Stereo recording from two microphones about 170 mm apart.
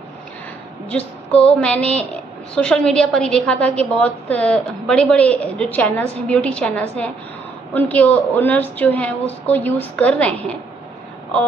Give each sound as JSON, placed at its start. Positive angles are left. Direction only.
{"t": 0.8, "sound": "female singing", "side_deg": 10}
{"t": 1.6, "sound": "a woman's voice", "side_deg": 5}